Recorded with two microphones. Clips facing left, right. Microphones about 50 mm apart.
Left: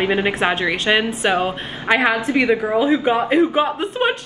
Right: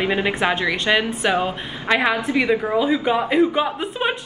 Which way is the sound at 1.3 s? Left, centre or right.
Left.